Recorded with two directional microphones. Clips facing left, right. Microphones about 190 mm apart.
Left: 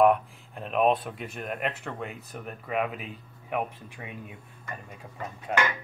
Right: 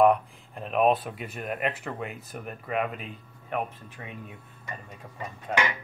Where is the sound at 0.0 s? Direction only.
Centre (ahead or behind).